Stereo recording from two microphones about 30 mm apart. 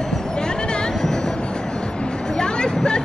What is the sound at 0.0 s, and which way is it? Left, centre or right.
Music, left.